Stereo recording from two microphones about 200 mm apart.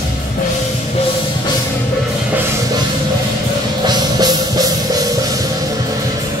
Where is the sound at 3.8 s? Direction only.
20° right (ahead or behind).